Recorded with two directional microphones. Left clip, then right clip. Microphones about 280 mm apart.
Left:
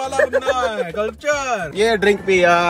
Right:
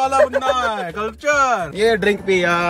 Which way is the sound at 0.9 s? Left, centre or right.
Right.